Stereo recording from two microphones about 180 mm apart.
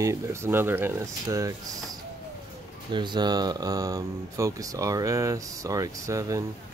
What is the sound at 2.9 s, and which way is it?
Speech, 25° right (ahead or behind).